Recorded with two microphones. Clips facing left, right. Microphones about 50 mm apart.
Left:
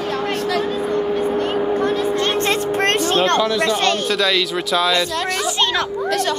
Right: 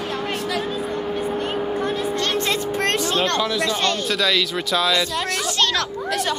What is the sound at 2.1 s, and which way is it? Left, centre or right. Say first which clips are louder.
Vehicle: left 4 dB; left.